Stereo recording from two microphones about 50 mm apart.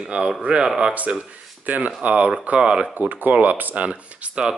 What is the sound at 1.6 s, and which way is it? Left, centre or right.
Speech, right.